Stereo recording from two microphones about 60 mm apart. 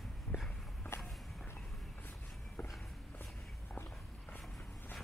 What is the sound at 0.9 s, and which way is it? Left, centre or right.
Walk, left.